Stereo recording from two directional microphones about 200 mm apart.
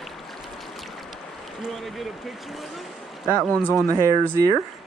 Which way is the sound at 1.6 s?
Centre (ahead or behind).